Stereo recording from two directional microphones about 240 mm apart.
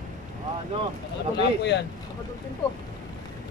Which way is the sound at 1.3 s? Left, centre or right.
Left.